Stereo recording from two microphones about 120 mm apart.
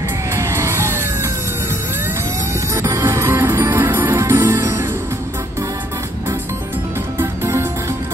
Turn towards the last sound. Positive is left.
turn(degrees=-20)  # may be behind; listen again after turning